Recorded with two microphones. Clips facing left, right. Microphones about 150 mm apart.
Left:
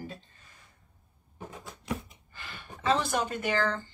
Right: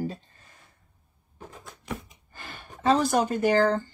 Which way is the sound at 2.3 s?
45° right (ahead or behind).